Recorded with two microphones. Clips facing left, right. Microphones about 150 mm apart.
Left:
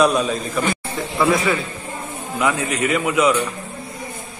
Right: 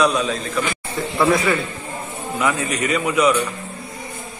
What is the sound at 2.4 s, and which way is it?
A man's voice, 15° left (ahead or behind).